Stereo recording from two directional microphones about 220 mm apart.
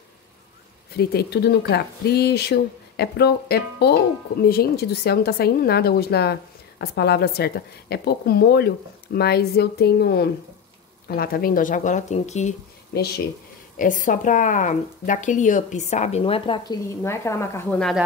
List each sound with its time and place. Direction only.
0.9 s a woman's voice: 45° left (ahead or behind); by 12.5 s 30° left (ahead or behind)
12.9 s a woman's voice: 45° left (ahead or behind); by 18.0 s 5° left (ahead or behind)